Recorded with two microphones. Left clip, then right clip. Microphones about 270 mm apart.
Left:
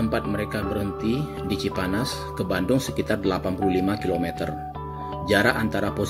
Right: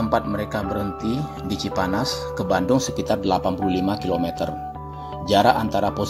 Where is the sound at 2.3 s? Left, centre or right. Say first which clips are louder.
Right 4 dB; centre.